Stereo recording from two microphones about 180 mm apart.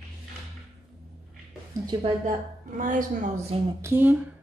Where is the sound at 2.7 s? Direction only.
45° right (ahead or behind).